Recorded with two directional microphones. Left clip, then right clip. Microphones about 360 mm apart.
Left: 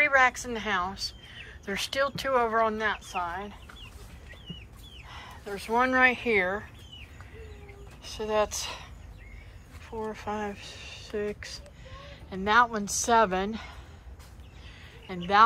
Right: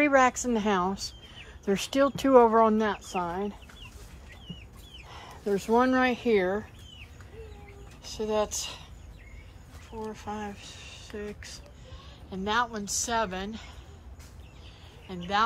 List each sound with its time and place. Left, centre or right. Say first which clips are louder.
0.0 s a woman's voice: even; centre
5.1 s speech: right 8 dB; centre
8.0 s a woman's voice: left 1 dB; centre
9.8 s speech: left 3 dB; centre
15.0 s speech: left 5 dB; centre